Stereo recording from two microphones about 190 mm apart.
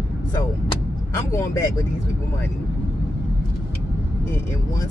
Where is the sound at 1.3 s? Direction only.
15° left (ahead or behind).